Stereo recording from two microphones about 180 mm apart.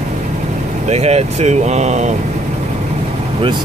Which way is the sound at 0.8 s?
35° right (ahead or behind).